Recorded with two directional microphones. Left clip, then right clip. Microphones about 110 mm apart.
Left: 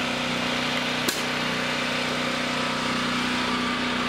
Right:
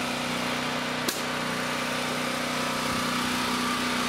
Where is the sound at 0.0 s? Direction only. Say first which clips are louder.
Left 3 dB; 10° right (ahead or behind).